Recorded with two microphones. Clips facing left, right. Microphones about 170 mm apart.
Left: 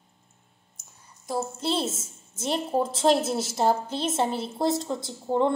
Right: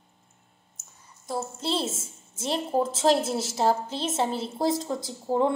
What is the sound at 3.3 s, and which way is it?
Speech, 25° right (ahead or behind).